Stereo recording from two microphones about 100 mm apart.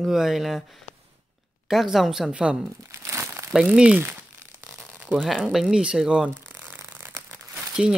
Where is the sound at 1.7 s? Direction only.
Centre (ahead or behind).